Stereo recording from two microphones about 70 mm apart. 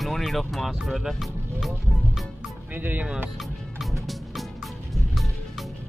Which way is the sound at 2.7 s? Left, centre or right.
Right.